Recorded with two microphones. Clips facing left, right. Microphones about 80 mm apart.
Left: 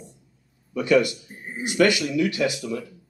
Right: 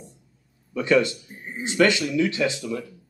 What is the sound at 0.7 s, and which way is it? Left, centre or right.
Speech, right.